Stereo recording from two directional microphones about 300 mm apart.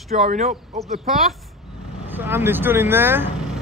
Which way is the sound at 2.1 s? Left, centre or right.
Centre.